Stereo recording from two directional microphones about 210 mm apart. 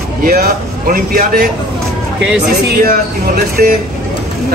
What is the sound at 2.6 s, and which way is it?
A man's voice, 45° right (ahead or behind).